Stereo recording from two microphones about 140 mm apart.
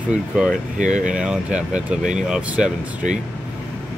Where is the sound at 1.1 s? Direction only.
5° right (ahead or behind).